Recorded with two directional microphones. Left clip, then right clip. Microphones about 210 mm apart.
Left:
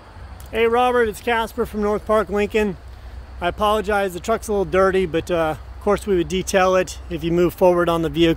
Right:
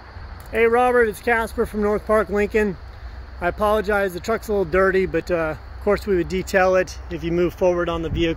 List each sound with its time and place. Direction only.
0.5 s speech: 5° left (ahead or behind); by 8.4 s 35° left (ahead or behind)